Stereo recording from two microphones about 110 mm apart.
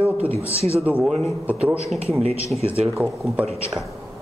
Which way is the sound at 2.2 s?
75° right (ahead or behind).